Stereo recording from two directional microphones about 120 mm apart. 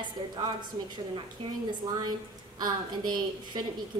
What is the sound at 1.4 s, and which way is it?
Speech, 50° right (ahead or behind).